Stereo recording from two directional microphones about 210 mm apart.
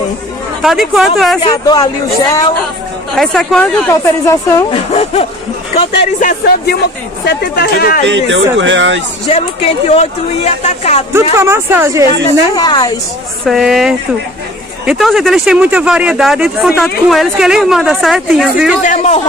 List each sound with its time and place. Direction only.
0.6 s speech: centre (ahead or behind)
1.4 s speech: 20° left (ahead or behind)
3.2 s speech: 5° left (ahead or behind); by 5.2 s 25° left (ahead or behind)
6.1 s speech: 40° left (ahead or behind)
7.2 s speech: 50° left (ahead or behind)
8.5 s speech: 60° right (ahead or behind)
9.3 s speech: 30° left (ahead or behind)
11.3 s speech: 10° right (ahead or behind)
12.5 s speech: 20° left (ahead or behind)
13.5 s speech: centre (ahead or behind)
18.8 s speech: 35° left (ahead or behind)